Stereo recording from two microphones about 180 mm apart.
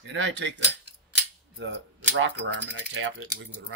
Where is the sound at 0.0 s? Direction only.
85° right.